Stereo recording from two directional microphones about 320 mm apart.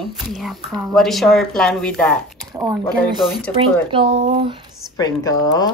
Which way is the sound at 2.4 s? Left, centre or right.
Centre.